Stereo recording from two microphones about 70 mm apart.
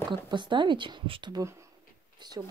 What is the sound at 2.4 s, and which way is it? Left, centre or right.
Speech, right.